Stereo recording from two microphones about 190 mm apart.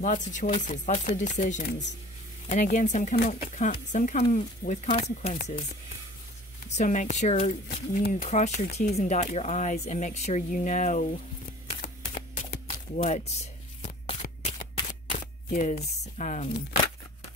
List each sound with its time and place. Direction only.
0.0 s speech: 40° left (ahead or behind)
6.8 s speech: 40° left (ahead or behind)
11.8 s a sound: 45° left (ahead or behind)
14.2 s single-lens reflex camera: 45° left (ahead or behind)